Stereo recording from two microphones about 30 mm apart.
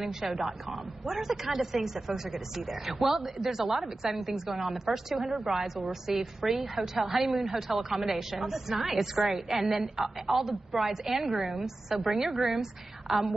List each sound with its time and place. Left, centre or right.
0.0 s speech: centre